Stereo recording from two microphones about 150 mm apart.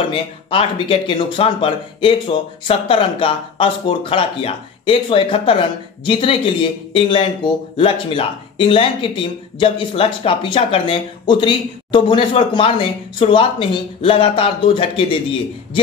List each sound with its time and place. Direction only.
0.1 s speech: 35° left (ahead or behind)